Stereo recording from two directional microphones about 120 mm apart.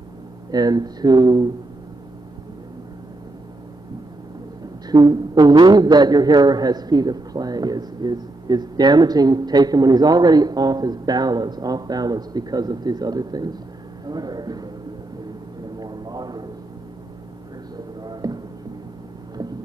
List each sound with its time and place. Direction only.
0.5 s a man's voice: 35° right (ahead or behind)
4.8 s a man's voice: 35° right (ahead or behind)
15.8 s a sound: 35° right (ahead or behind)
18.0 s music: 35° right (ahead or behind)